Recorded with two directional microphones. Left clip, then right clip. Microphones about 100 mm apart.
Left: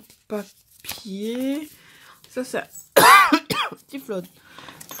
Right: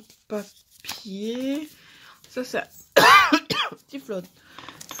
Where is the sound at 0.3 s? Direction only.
25° left (ahead or behind).